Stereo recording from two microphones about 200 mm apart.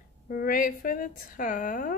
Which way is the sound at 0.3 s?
45° left (ahead or behind).